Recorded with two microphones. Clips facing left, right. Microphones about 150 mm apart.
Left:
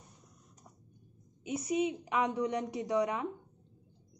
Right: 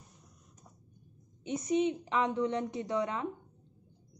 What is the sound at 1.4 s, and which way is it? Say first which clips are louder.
A woman's voice: right 2 dB; 5° left (ahead or behind).